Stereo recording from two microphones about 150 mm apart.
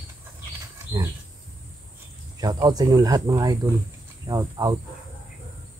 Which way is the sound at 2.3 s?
25° right (ahead or behind).